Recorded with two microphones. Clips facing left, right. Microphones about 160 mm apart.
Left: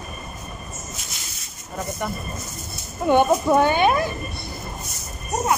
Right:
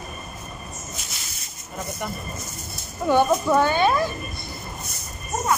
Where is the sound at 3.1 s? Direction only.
20° left (ahead or behind).